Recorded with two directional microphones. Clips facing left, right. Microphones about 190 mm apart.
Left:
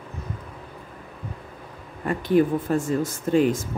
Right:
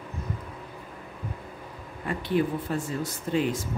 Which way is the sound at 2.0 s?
45° left (ahead or behind).